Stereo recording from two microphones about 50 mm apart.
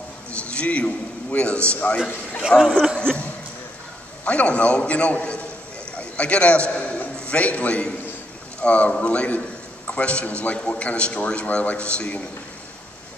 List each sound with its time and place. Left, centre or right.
0.3 s a man's voice: left
2.4 s speech: centre
4.2 s a man's voice: left